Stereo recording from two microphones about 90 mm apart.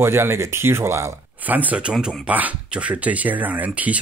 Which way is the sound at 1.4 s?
20° right (ahead or behind).